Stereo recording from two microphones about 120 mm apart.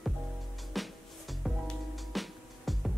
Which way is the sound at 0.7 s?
Centre (ahead or behind).